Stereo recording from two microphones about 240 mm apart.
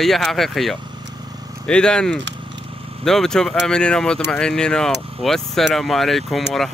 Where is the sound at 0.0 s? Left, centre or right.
Centre.